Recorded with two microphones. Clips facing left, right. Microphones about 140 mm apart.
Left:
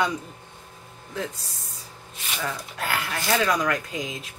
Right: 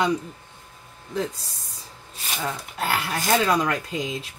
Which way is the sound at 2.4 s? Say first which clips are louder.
Right 2 dB; 25° right (ahead or behind).